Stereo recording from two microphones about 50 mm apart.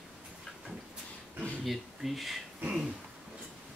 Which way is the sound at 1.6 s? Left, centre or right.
Centre.